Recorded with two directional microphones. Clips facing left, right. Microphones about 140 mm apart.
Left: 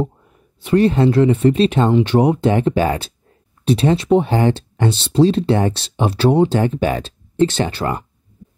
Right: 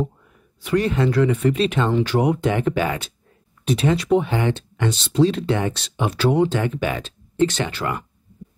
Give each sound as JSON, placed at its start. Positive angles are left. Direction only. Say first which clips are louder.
{"t": 0.6, "sound": "speech", "louder": "left 6 dB", "side_deg": 30}